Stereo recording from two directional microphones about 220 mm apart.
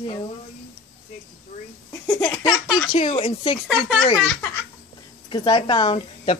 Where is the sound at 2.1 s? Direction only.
15° left (ahead or behind).